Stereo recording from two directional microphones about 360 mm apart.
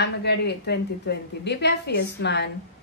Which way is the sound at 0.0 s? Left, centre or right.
Left.